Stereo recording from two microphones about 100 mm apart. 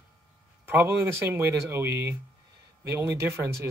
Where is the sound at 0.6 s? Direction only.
20° right (ahead or behind).